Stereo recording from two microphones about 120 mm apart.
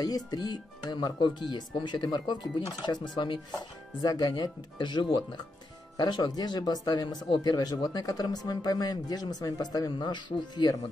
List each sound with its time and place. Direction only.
0.0 s speech: 30° left (ahead or behind)